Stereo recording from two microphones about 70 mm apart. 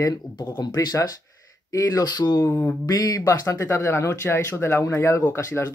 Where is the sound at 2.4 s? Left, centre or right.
Left.